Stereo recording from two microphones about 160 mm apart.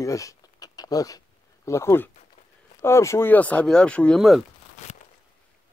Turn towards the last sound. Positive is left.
turn(degrees=0)  # may be behind; listen again after turning